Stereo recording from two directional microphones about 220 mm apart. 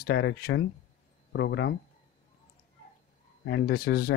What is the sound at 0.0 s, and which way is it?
Speech, 50° left (ahead or behind).